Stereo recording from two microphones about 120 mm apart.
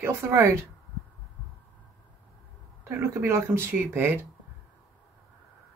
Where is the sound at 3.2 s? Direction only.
20° right (ahead or behind).